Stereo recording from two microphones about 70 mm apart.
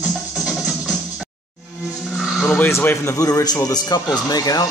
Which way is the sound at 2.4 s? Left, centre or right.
Centre.